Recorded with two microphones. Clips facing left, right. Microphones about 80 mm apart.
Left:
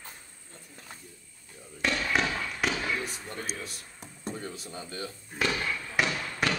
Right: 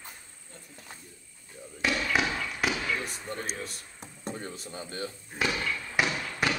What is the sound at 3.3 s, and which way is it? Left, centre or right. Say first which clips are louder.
Speech: right 1 dB; right.